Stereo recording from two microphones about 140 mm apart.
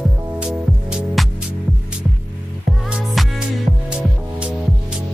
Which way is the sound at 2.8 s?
Centre (ahead or behind).